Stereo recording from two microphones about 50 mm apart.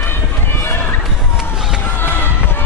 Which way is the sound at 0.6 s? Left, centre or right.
Left.